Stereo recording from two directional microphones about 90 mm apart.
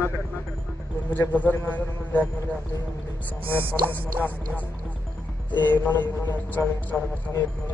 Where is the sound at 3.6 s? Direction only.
20° right (ahead or behind).